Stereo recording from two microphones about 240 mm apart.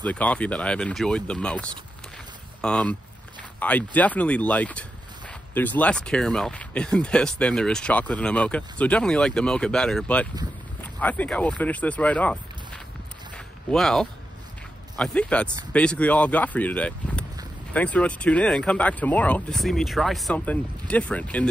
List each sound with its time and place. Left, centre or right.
0.0 s speech: centre